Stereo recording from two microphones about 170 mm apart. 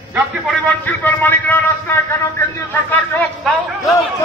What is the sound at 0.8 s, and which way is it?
Speech, 10° left (ahead or behind).